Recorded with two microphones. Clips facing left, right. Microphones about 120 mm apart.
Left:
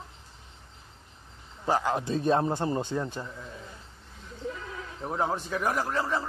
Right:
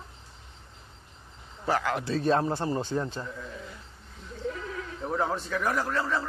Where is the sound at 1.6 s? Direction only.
20° left (ahead or behind).